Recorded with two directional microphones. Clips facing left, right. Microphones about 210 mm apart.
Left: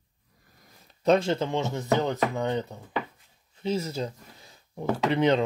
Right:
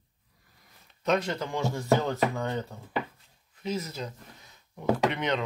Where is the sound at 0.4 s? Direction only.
45° left (ahead or behind); by 2.8 s 20° left (ahead or behind).